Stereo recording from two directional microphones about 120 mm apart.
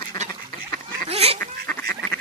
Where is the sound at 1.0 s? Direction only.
55° right (ahead or behind).